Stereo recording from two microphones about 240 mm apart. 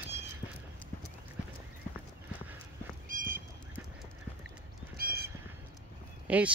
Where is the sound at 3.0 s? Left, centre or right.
Right.